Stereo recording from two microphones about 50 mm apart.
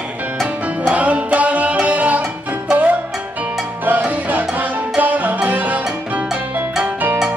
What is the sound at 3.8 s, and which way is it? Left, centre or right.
Music, right.